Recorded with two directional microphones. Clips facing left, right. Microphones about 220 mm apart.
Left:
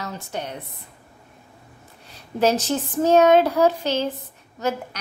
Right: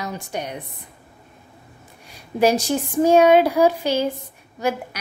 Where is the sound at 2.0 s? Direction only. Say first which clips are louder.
Right 2 dB; 10° right (ahead or behind).